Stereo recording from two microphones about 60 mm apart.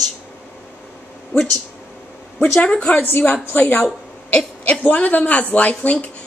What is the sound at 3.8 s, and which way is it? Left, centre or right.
A woman's voice, centre.